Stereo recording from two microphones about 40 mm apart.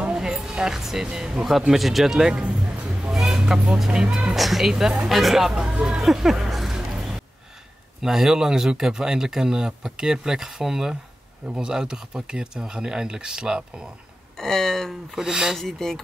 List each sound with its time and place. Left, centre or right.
0.1 s music: centre
0.5 s speech: centre
1.7 s speech: centre
2.3 s music: right
3.1 s a sound: centre
3.5 s speech: centre
4.4 s speech: centre
5.5 s speech: right
5.9 s speech: centre
6.7 s a sound: centre
8.0 s speech: centre
14.4 s a sound: centre
15.1 s speech: centre
15.5 s a sound: centre